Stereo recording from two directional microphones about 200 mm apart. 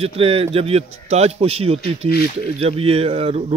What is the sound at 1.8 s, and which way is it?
Speech, 50° left (ahead or behind).